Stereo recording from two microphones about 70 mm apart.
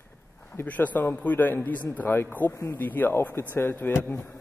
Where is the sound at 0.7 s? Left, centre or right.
Left.